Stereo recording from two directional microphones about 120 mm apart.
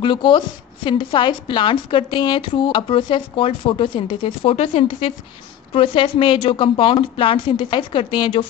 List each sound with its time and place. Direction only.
0.0 s a woman's voice: 40° left (ahead or behind)